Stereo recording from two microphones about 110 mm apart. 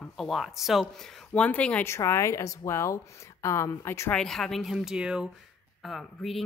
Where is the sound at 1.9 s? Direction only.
25° left (ahead or behind).